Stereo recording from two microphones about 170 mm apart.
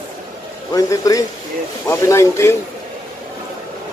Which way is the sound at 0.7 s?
20° left (ahead or behind).